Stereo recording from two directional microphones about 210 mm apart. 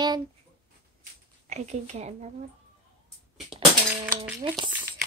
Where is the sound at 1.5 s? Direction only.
30° right (ahead or behind).